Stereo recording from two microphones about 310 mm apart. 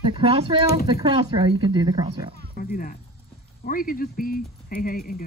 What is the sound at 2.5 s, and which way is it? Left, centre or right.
Speech, left.